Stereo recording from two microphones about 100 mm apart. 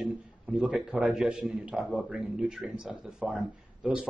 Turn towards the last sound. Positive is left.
turn(degrees=-10)  # may be behind; listen again after turning